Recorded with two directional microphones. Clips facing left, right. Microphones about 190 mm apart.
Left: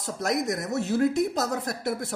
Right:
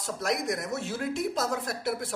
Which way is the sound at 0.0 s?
40° left (ahead or behind).